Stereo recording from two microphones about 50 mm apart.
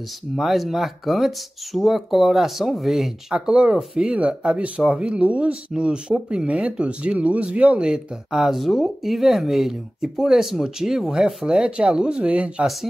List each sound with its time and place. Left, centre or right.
0.4 s speech: centre
3.3 s speech: centre
8.3 s speech: centre
11.4 s speech: right